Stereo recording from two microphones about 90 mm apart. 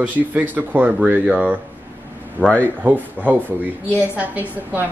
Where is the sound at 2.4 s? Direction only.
15° left (ahead or behind).